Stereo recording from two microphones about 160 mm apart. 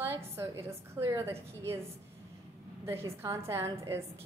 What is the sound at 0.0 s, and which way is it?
A woman's voice, 15° right (ahead or behind).